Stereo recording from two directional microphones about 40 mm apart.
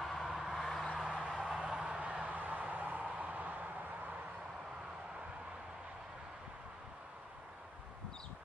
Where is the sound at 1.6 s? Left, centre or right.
Centre.